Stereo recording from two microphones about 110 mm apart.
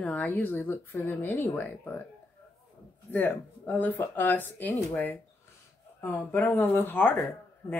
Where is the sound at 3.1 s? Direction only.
15° left (ahead or behind).